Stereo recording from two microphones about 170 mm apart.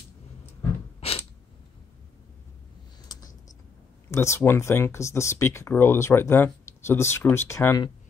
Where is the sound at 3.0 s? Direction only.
20° left (ahead or behind).